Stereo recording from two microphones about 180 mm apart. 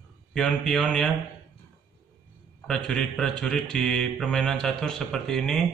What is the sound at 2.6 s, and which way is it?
Mantra, 5° left (ahead or behind).